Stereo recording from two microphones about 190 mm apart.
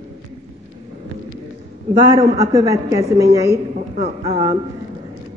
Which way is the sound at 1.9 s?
35° right (ahead or behind).